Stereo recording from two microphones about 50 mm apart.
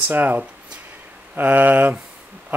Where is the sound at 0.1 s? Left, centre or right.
Right.